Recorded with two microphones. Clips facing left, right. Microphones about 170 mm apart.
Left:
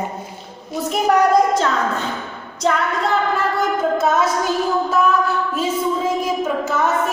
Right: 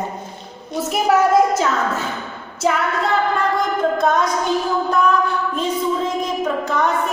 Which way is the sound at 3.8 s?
5° left (ahead or behind).